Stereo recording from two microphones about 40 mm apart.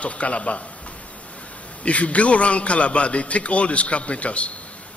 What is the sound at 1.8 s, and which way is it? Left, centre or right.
A man's voice, left.